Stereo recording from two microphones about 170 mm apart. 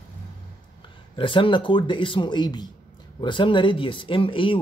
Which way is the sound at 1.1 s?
30° left (ahead or behind).